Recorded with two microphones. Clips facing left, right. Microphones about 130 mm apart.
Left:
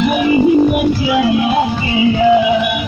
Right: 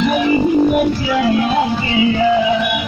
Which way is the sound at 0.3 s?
5° left (ahead or behind).